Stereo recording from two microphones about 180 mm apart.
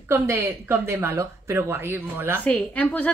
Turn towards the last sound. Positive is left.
turn(degrees=10)  # may be behind; listen again after turning